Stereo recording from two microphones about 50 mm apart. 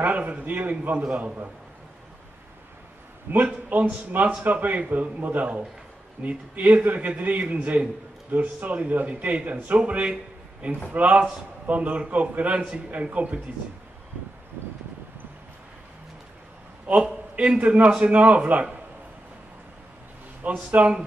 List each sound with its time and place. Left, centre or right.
0.0 s a man's voice: right
3.3 s a man's voice: right
16.8 s a man's voice: right
20.4 s a man's voice: right